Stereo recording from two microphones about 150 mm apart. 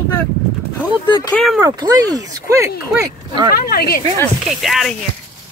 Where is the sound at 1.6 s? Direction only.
25° right (ahead or behind).